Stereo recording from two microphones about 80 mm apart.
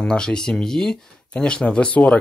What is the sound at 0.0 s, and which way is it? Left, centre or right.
Speech, centre.